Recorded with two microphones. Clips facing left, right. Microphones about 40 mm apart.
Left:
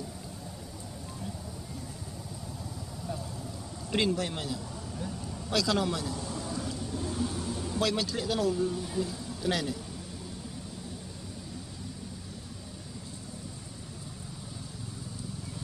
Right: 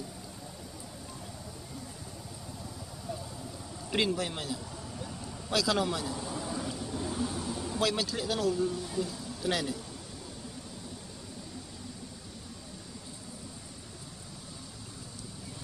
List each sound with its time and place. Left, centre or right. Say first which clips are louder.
3.9 s speech: left 1 dB; centre
6.1 s vehicle: even; centre
6.8 s a sound: left 1 dB; centre